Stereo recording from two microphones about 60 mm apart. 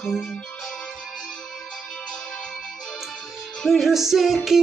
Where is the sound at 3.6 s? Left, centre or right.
Centre.